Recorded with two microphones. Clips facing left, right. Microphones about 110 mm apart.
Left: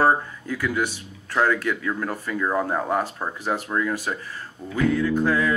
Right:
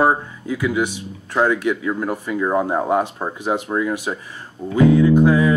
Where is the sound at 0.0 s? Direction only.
15° right (ahead or behind).